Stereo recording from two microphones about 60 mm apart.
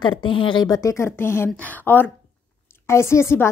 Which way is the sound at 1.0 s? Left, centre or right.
Left.